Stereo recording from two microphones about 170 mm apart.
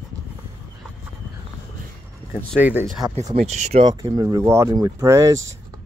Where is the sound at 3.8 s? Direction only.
25° right (ahead or behind).